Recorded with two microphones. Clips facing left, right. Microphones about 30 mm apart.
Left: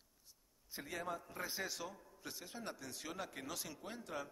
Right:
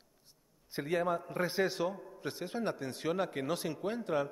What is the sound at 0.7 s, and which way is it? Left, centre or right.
A man's voice, right.